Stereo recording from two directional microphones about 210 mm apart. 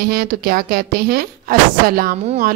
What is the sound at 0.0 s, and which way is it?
A woman's voice, 45° right (ahead or behind).